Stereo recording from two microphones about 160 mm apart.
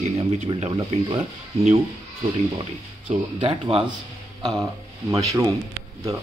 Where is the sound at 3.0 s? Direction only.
35° right (ahead or behind).